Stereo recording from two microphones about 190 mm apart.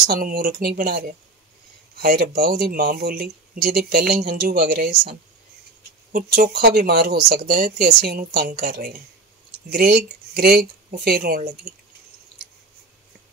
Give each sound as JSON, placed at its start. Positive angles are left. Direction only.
{"t": 0.0, "sound": "speech", "side_deg": -50}
{"t": 6.1, "sound": "speech", "side_deg": -50}